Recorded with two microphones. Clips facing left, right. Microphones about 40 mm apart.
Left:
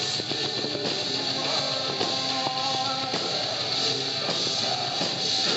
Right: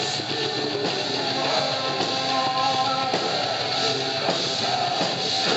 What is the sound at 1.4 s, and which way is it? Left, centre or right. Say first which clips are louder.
Music: right 6 dB; centre.